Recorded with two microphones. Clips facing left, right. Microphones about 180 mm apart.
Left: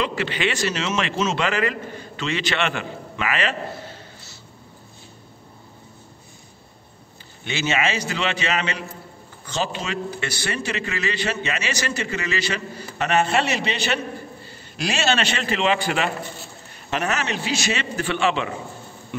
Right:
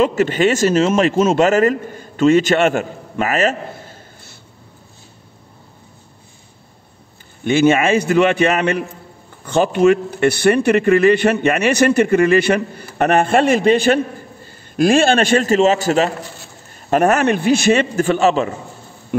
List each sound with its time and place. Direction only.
0.0 s a man's voice: 45° right (ahead or behind)
7.4 s a man's voice: 50° right (ahead or behind)
16.9 s a man's voice: 50° right (ahead or behind)